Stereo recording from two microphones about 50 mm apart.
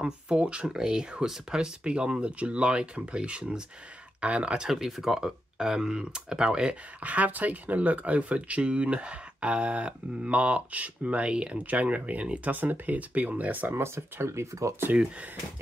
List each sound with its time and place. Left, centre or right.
0.0 s speech: right
4.6 s speech: centre; by 13.7 s right
13.7 s speech: right